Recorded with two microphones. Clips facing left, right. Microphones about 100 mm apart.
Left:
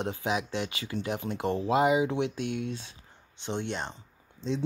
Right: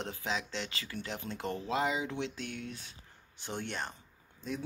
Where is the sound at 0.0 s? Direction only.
15° left (ahead or behind).